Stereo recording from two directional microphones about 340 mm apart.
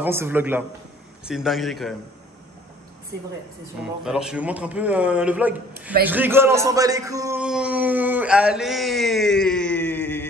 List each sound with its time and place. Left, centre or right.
0.0 s a man's voice: centre
3.8 s a man's voice: centre